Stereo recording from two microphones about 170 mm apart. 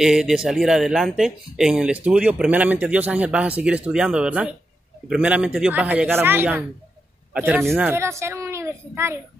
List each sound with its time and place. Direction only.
0.0 s speech: 5° right (ahead or behind)